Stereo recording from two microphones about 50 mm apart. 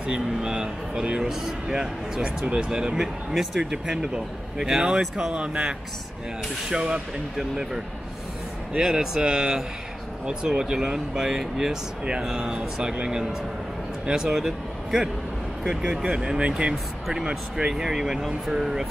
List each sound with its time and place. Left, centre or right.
0.0 s speech: centre
5.3 s speech: right
7.3 s speech: centre